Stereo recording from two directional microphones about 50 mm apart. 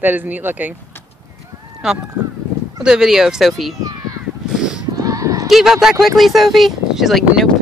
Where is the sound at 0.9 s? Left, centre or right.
Left.